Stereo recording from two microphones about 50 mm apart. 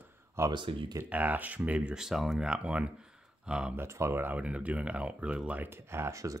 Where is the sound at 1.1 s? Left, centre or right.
Right.